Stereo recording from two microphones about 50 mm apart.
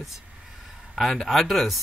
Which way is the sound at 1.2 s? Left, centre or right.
Centre.